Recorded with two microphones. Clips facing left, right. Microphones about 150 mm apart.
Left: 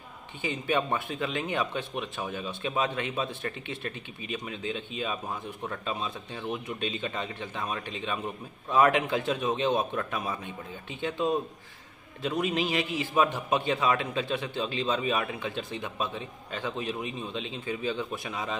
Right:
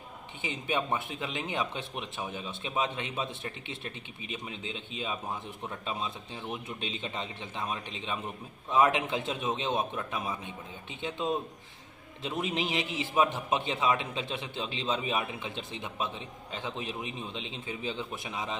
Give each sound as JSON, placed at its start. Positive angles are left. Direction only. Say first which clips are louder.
{"t": 0.4, "sound": "speech", "louder": "left 4 dB", "side_deg": -20}